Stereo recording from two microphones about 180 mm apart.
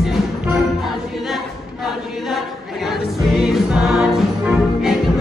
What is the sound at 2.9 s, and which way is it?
Music, centre (ahead or behind).